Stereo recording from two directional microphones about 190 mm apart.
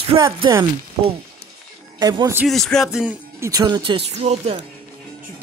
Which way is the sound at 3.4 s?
20° right (ahead or behind).